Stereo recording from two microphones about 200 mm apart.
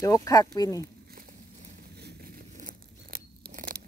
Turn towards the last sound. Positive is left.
turn(degrees=-45)  # may be behind; listen again after turning